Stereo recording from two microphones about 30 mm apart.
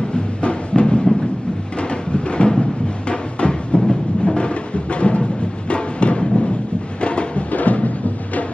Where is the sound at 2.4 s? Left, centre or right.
Left.